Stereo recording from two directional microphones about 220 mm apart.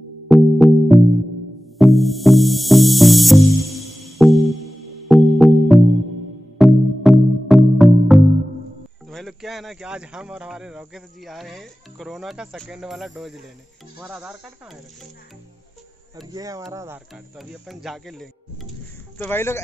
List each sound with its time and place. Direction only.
0.3 s music: centre (ahead or behind)
9.1 s speech: centre (ahead or behind)
16.3 s speech: 15° right (ahead or behind)
17.1 s speech: centre (ahead or behind)